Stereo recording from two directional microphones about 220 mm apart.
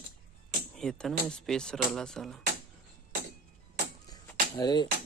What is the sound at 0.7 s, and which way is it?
Speech, centre (ahead or behind).